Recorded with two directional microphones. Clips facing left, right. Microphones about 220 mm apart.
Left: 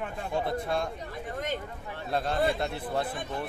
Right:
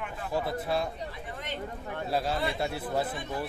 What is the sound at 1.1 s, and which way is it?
Speech, 45° left (ahead or behind).